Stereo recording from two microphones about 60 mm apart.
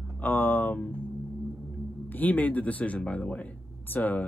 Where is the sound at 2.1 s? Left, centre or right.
Left.